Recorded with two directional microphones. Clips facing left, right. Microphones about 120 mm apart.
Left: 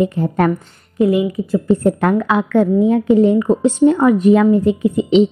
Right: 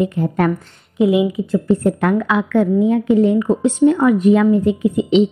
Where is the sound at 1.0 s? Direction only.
5° right (ahead or behind).